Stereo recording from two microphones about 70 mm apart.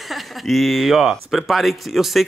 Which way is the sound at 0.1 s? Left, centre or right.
Centre.